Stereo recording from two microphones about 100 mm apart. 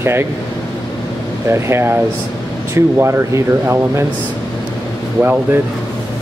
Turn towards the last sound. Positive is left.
turn(degrees=-20)  # may be behind; listen again after turning